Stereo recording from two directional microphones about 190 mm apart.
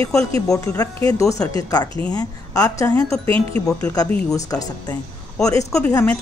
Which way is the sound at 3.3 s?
30° right (ahead or behind).